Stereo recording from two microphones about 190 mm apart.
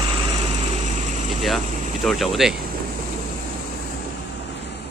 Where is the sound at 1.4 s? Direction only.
Centre (ahead or behind).